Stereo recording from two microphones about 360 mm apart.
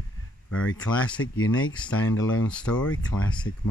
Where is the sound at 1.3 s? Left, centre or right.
Left.